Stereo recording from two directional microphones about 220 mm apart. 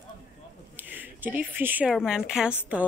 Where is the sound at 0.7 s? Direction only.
10° right (ahead or behind).